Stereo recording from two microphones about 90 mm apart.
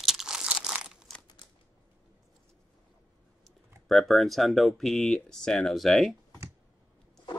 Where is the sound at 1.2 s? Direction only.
60° left (ahead or behind).